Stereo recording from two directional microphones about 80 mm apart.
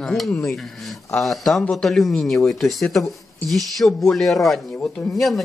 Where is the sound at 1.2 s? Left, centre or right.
Centre.